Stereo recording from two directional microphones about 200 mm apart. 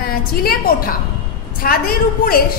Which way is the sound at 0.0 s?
50° left (ahead or behind).